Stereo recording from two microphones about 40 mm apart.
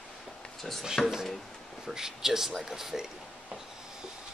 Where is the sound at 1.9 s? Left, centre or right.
Centre.